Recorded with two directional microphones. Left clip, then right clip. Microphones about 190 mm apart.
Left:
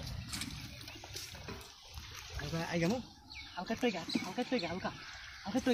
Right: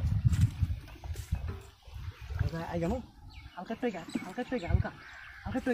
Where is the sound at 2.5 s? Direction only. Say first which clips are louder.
Right 1 dB; 10° left (ahead or behind).